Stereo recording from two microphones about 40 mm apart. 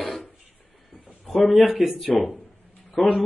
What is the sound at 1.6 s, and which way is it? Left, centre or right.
Speech, centre.